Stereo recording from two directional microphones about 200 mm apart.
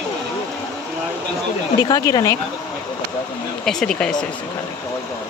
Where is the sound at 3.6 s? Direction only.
5° left (ahead or behind).